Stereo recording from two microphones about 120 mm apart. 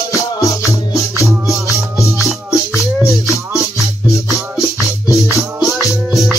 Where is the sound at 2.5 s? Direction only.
25° left (ahead or behind).